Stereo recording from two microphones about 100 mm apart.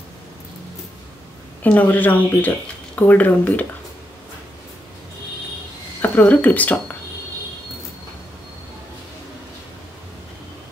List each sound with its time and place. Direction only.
1.6 s speech: 15° left (ahead or behind)
5.9 s speech: 20° left (ahead or behind)